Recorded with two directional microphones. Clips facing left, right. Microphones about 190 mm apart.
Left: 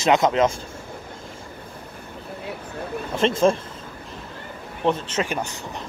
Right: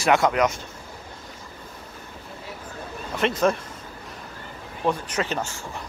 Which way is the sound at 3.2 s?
25° left (ahead or behind).